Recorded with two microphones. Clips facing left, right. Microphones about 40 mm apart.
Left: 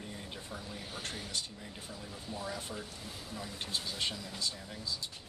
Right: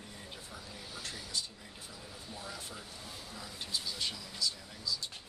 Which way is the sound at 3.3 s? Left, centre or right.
Left.